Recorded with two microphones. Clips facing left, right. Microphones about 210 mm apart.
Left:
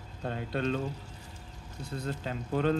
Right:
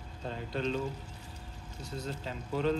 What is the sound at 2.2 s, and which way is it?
Speech, 50° left (ahead or behind).